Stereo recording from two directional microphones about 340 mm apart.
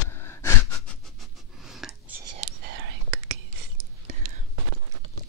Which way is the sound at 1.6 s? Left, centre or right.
Centre.